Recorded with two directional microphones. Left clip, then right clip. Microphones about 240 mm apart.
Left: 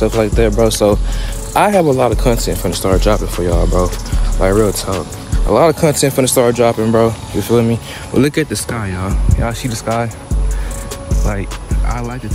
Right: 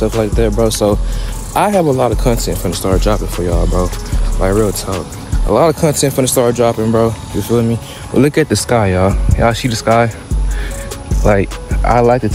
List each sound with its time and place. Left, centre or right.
0.0 s speech: centre
8.1 s speech: centre
8.6 s speech: centre